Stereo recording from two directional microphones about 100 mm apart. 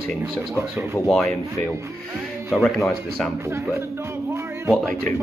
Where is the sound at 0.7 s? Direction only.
5° left (ahead or behind).